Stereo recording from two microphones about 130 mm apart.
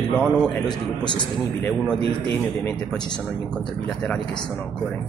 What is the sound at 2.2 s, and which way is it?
Speech, 10° left (ahead or behind).